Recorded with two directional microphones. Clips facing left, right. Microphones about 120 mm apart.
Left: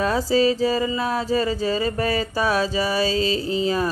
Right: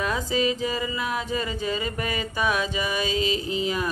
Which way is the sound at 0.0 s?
35° left (ahead or behind).